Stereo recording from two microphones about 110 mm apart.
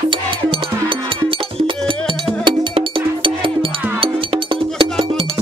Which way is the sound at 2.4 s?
50° right (ahead or behind).